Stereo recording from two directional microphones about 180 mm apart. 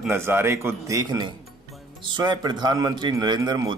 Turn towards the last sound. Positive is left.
turn(degrees=-20)  # may be behind; listen again after turning